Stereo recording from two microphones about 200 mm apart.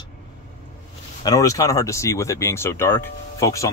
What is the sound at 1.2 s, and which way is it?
Speech, 20° left (ahead or behind).